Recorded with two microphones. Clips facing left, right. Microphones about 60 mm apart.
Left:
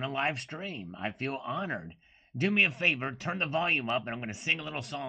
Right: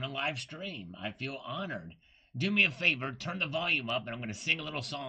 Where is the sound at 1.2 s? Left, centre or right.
Left.